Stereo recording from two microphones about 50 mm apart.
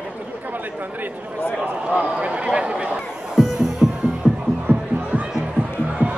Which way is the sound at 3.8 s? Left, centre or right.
Right.